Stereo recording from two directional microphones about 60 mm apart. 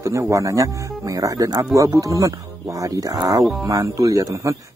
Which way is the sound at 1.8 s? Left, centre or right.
Right.